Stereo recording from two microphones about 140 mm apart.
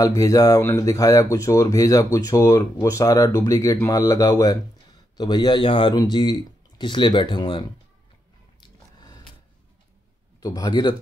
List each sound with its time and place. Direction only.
0.0 s speech: 25° left (ahead or behind)
10.4 s speech: 30° left (ahead or behind)